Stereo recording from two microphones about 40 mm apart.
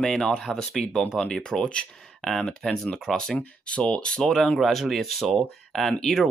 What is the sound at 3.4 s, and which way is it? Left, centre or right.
Speech, left.